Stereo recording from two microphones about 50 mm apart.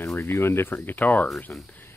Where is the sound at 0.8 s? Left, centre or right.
Left.